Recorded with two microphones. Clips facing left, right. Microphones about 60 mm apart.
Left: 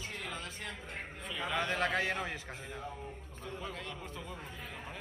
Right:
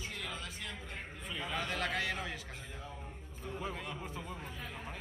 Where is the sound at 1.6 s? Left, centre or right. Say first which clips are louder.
Left 4 dB; left.